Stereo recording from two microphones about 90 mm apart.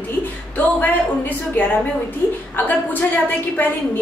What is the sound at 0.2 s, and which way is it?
A woman's voice, 20° left (ahead or behind).